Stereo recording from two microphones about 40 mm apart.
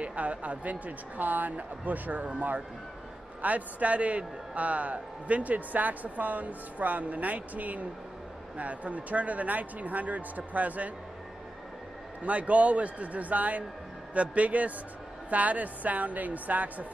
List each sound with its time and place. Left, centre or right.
0.0 s a man's voice: right
12.2 s a man's voice: right